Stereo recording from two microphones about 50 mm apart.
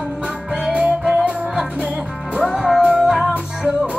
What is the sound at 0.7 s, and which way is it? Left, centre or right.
Music, centre.